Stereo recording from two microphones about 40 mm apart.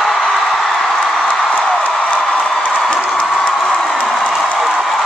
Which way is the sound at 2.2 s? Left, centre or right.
Centre.